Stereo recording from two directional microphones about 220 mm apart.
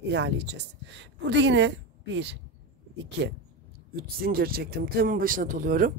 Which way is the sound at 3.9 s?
40° right (ahead or behind).